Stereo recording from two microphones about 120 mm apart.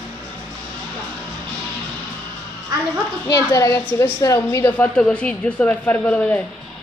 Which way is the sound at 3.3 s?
25° left (ahead or behind).